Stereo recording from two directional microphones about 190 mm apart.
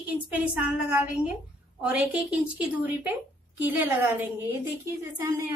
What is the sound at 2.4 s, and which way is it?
A woman's voice, 5° right (ahead or behind).